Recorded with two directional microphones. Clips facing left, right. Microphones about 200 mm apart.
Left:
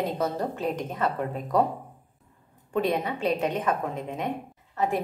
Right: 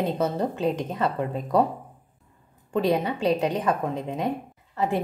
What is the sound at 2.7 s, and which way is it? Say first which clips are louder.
A woman's voice: right 3 dB; 30° right (ahead or behind).